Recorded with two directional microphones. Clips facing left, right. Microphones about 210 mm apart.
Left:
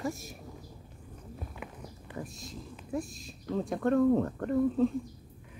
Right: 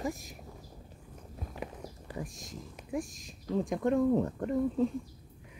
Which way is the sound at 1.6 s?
40° right (ahead or behind).